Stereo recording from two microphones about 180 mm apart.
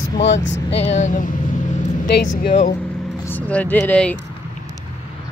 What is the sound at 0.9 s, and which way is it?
Speech, 45° left (ahead or behind).